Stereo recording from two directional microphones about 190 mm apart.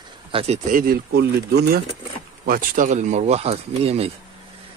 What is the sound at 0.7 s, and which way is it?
Speech, 50° right (ahead or behind).